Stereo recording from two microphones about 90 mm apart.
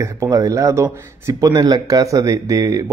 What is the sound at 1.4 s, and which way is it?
Speech, 45° right (ahead or behind).